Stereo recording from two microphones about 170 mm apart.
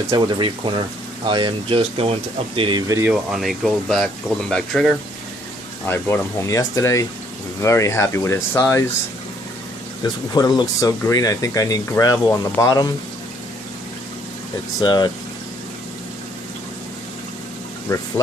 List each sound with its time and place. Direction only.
0.1 s speech: 30° right (ahead or behind)
2.9 s speech: 15° right (ahead or behind)
3.3 s speech: centre (ahead or behind)
5.9 s speech: 15° left (ahead or behind)
10.0 s speech: 25° left (ahead or behind)
14.8 s speech: 25° left (ahead or behind)
17.8 s speech: 20° left (ahead or behind)